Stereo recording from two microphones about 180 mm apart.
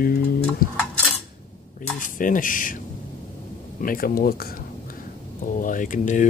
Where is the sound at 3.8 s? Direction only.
55° left (ahead or behind).